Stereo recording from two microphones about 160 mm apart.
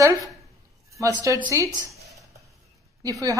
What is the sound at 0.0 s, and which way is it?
A woman's voice, 20° right (ahead or behind).